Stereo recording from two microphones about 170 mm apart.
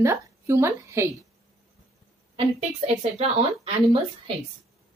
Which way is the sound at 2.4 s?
40° right (ahead or behind).